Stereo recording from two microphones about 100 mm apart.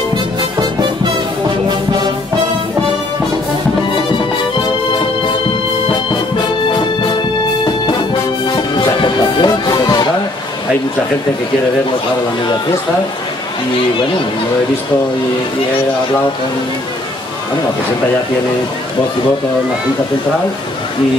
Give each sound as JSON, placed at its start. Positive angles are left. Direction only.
{"t": 7.6, "sound": "music", "side_deg": 50}